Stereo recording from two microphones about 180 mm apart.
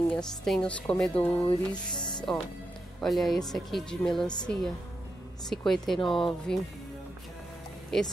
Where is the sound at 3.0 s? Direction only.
Centre (ahead or behind).